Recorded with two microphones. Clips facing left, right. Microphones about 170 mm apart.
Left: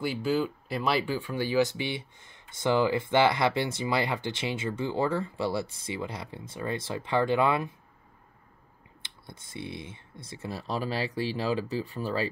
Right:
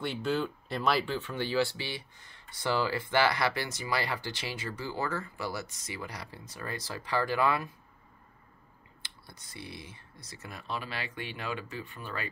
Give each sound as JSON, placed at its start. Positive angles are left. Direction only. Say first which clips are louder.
{"t": 0.0, "sound": "speech", "louder": "left 3 dB", "side_deg": 5}
{"t": 9.2, "sound": "speech", "louder": "left 7 dB", "side_deg": 25}